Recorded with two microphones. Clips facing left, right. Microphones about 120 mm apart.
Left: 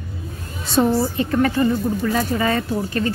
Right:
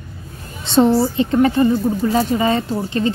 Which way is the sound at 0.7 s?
25° right (ahead or behind).